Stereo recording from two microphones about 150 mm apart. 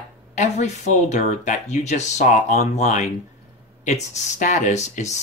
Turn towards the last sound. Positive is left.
turn(degrees=50)  # may be behind; listen again after turning